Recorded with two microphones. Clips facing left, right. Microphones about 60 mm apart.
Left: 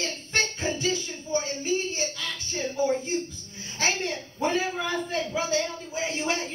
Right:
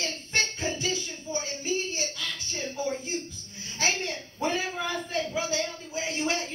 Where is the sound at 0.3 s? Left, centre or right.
Left.